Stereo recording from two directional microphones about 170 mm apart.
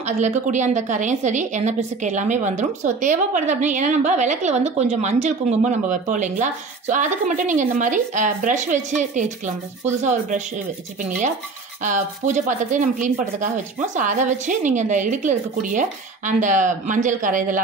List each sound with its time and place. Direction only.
0.2 s a woman's voice: 45° right (ahead or behind)
11.8 s a woman's voice: 45° right (ahead or behind)